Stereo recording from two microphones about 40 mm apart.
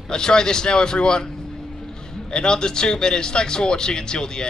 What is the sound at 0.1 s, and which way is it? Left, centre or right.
Speech, centre.